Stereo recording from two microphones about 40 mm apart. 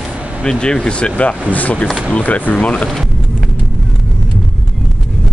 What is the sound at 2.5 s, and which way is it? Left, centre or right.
Speech, left.